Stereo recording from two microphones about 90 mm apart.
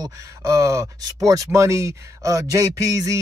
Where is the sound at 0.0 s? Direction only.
40° right (ahead or behind).